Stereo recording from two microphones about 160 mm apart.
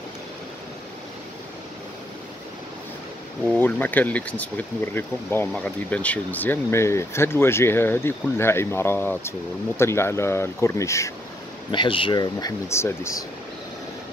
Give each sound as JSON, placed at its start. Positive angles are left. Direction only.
{"t": 3.4, "sound": "speech", "side_deg": 10}
{"t": 11.7, "sound": "speech", "side_deg": 30}